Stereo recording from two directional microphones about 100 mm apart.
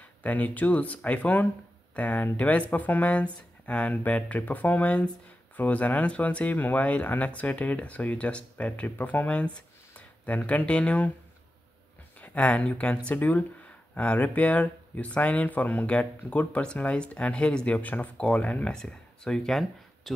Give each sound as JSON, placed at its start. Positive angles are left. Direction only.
{"t": 0.2, "sound": "speech", "side_deg": 15}
{"t": 12.2, "sound": "speech", "side_deg": 15}